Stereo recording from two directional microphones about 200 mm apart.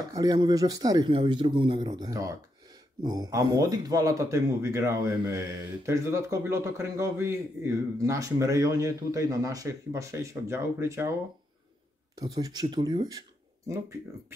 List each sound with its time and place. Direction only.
0.1 s speech: 20° right (ahead or behind)
12.2 s speech: 20° right (ahead or behind)